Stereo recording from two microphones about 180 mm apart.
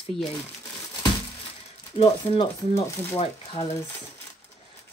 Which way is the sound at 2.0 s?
30° left (ahead or behind).